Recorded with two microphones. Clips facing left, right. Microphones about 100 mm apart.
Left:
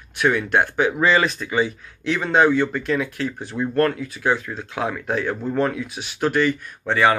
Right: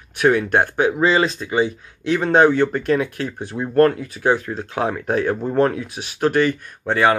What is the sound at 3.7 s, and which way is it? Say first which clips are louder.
Speech: right 6 dB; 35° right (ahead or behind).